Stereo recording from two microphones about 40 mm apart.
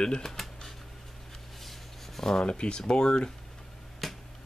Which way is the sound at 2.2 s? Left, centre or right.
Centre.